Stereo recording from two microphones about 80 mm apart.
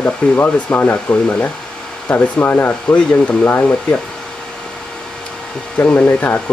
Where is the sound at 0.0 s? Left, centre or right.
Left.